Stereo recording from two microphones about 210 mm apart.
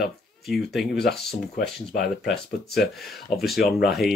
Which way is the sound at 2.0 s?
Centre (ahead or behind).